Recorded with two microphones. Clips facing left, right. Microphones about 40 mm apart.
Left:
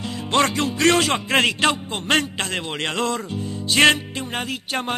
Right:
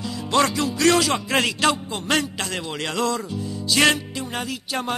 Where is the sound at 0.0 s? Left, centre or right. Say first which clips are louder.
Even; left.